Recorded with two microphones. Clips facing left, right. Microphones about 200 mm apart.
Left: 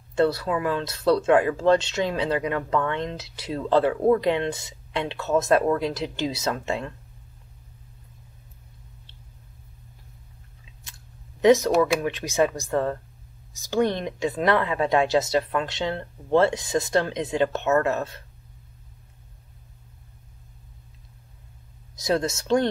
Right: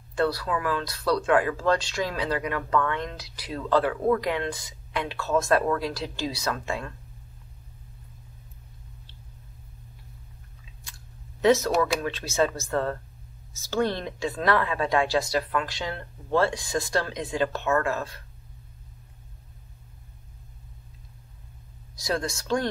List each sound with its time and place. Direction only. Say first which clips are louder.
0.1 s speech: left 4 dB; 25° left (ahead or behind)
11.4 s speech: left 4 dB; 15° left (ahead or behind)
21.9 s speech: left 5 dB; 20° left (ahead or behind)